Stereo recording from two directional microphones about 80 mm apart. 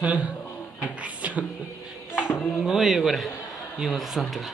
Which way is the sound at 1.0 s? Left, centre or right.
Centre.